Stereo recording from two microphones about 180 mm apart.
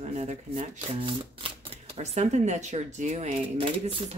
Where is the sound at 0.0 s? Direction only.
35° right (ahead or behind).